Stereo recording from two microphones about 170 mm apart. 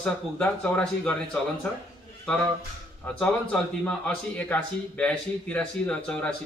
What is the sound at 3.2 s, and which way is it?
A man's voice, 5° left (ahead or behind).